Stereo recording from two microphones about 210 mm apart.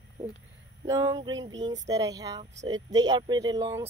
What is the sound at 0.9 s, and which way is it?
Speech, 20° right (ahead or behind).